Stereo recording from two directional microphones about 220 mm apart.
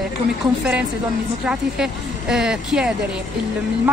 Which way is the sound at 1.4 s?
5° right (ahead or behind).